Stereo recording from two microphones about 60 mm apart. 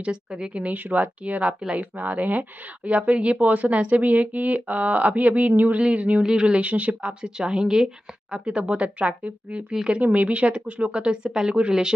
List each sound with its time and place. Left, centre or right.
0.0 s speech: centre